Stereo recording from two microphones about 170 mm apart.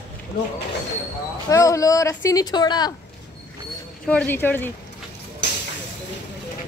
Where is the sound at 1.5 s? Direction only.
20° left (ahead or behind).